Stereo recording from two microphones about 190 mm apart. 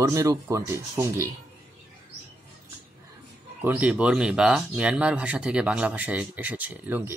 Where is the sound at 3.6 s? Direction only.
10° right (ahead or behind).